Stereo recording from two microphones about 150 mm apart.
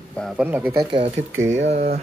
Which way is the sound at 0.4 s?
10° right (ahead or behind).